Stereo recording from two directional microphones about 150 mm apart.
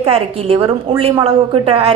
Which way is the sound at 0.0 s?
40° right (ahead or behind).